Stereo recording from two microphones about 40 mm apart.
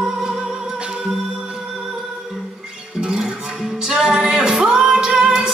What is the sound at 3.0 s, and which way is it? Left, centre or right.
Music, centre.